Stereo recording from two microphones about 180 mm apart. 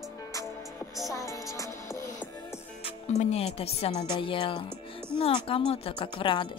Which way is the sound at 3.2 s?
35° left (ahead or behind).